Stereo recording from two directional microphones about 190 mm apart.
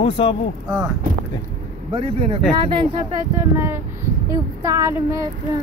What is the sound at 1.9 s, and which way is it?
Speech, 30° right (ahead or behind).